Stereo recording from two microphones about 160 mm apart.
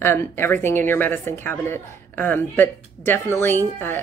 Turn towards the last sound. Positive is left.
turn(degrees=15)  # may be behind; listen again after turning